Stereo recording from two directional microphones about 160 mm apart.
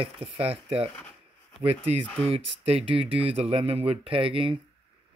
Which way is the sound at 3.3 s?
40° right (ahead or behind).